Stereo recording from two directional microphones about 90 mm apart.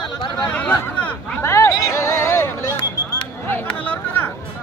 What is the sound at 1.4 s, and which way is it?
Speech, 30° left (ahead or behind).